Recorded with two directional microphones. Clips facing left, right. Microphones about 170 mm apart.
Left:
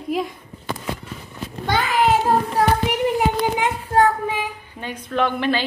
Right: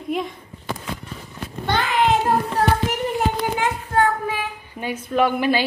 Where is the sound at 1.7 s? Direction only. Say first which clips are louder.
Left 1 dB; centre (ahead or behind).